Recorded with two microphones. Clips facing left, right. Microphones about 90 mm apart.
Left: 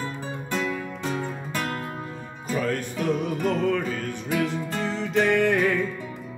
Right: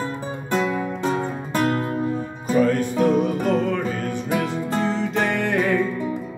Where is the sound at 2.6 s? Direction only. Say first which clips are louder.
Right 7 dB; 5° right (ahead or behind).